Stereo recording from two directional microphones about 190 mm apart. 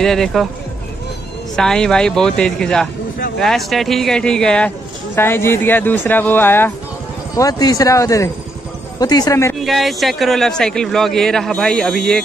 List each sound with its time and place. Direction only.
0.0 s speech: centre (ahead or behind)
1.6 s a man's voice: 5° left (ahead or behind)
9.6 s speech: centre (ahead or behind)